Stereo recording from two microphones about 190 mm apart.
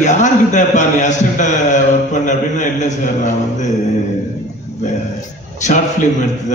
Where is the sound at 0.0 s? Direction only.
40° left (ahead or behind).